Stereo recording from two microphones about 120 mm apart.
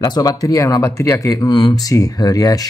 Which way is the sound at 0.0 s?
35° left (ahead or behind).